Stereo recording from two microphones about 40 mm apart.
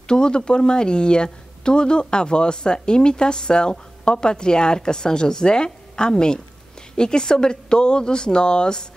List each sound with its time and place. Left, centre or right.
0.1 s speech: left